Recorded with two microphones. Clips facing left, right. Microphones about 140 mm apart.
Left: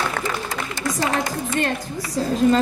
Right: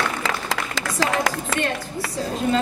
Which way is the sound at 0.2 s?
90° right.